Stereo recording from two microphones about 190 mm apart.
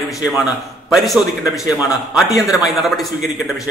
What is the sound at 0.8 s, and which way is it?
A man's voice, centre (ahead or behind).